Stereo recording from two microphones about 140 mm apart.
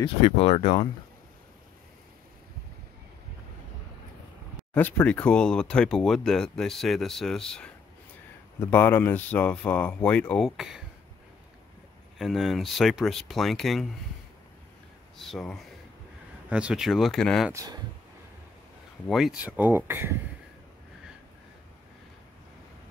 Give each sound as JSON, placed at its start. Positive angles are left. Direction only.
{"t": 0.0, "sound": "speech", "side_deg": 45}
{"t": 5.0, "sound": "speech", "side_deg": 10}
{"t": 8.5, "sound": "speech", "side_deg": 15}
{"t": 12.2, "sound": "speech", "side_deg": 0}
{"t": 15.1, "sound": "speech", "side_deg": 0}
{"t": 17.5, "sound": "speech", "side_deg": -20}
{"t": 19.0, "sound": "speech", "side_deg": 0}